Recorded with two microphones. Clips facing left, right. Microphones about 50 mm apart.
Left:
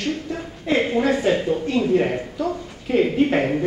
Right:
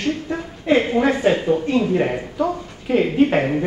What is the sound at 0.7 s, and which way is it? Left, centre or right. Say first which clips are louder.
Speech: right 3 dB; right.